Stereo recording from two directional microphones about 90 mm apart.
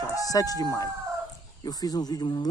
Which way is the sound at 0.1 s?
40° left (ahead or behind).